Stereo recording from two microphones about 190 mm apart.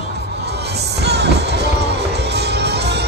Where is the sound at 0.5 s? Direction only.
60° right (ahead or behind).